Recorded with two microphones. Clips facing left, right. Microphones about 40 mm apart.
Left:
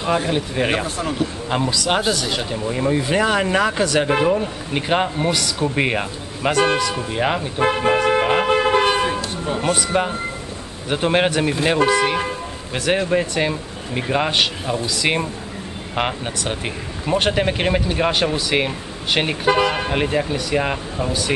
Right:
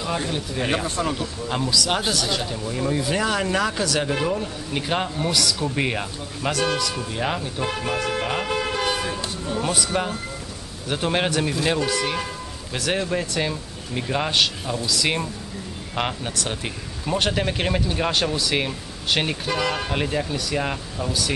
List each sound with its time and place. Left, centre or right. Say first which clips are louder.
0.3 s speech: left 5 dB; left
0.8 s a man's voice: even; centre
1.2 s speech: left 5 dB; left
7.5 s toot: left 8 dB; left
8.9 s toot: left 7 dB; left
9.5 s a man's voice: left 4 dB; left